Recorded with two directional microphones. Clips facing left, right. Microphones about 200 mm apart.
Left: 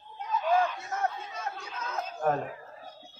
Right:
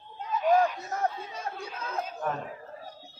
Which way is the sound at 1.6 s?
30° right (ahead or behind).